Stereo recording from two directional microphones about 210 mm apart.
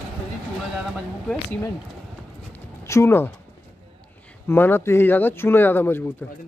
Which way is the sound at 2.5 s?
15° left (ahead or behind).